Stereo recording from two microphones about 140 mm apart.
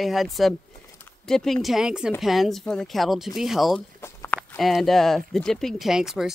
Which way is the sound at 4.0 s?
20° left (ahead or behind).